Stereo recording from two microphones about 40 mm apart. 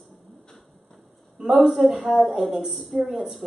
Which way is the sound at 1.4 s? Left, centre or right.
Centre.